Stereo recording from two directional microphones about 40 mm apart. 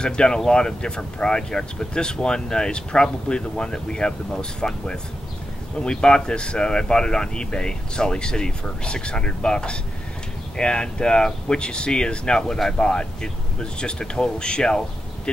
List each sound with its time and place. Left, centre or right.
0.0 s speech: left